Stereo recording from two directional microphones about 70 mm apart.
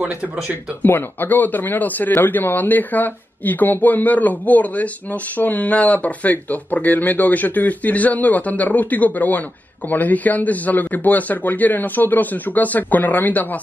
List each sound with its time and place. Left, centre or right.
0.8 s speech: left